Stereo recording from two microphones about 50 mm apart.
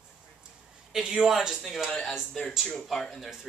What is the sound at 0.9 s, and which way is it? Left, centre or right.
Speech, centre.